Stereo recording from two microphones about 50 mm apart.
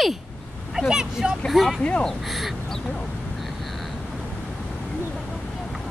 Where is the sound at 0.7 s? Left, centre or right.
Centre.